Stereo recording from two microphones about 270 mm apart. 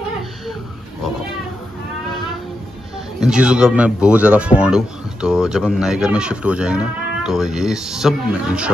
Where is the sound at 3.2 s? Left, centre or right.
Centre.